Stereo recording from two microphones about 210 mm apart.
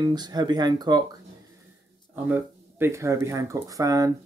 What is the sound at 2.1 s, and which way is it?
Speech, 10° right (ahead or behind).